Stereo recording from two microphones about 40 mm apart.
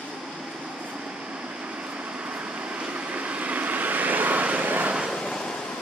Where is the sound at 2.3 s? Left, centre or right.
Right.